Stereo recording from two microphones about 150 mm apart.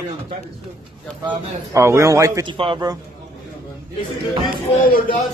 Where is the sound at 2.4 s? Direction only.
35° right (ahead or behind).